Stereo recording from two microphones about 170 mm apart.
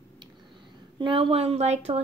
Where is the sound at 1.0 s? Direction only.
30° right (ahead or behind).